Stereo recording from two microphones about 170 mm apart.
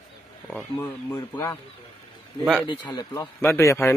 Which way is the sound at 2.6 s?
25° left (ahead or behind).